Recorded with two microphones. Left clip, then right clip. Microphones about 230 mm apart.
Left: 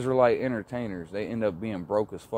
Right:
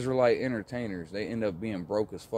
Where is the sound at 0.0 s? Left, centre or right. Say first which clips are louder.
Left 3 dB; centre.